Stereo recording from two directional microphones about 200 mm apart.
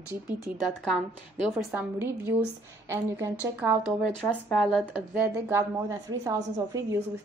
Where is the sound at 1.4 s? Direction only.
Centre (ahead or behind).